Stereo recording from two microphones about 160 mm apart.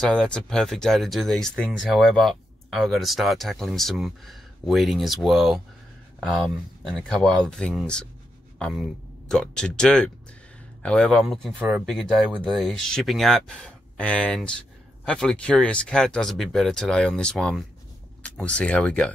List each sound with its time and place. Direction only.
0.0 s speech: 5° left (ahead or behind)